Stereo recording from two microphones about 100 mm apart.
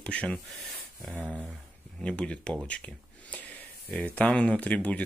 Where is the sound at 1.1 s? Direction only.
15° right (ahead or behind).